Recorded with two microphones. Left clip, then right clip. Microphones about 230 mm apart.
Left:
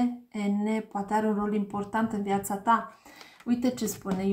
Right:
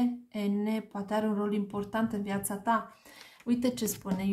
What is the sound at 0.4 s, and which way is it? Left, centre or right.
Speech, right.